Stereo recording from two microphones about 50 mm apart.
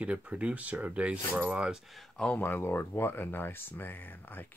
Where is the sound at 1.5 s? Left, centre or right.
Centre.